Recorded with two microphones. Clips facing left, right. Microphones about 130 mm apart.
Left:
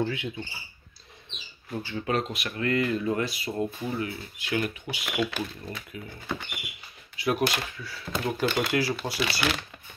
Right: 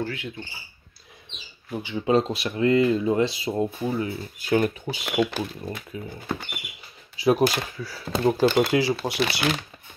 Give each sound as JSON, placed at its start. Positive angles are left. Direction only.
{"t": 0.0, "sound": "speech", "side_deg": 20}
{"t": 1.7, "sound": "speech", "side_deg": -15}
{"t": 2.2, "sound": "speech", "side_deg": -30}
{"t": 4.4, "sound": "speech", "side_deg": -40}